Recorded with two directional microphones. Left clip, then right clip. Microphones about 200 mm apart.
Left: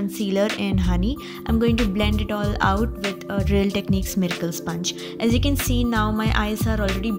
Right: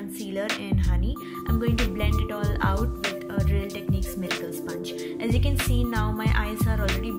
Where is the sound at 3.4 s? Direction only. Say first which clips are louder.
Left 9 dB; 45° left (ahead or behind).